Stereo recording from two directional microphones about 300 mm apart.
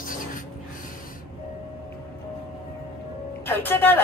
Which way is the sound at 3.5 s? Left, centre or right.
Centre.